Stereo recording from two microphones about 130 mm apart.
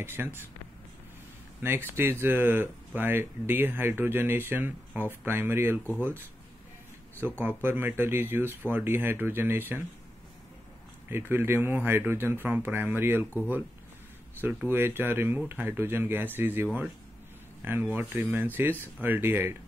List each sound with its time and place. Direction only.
0.0 s speech: 15° right (ahead or behind)
1.6 s speech: 15° right (ahead or behind)
11.1 s speech: 15° right (ahead or behind)
14.4 s speech: 15° right (ahead or behind)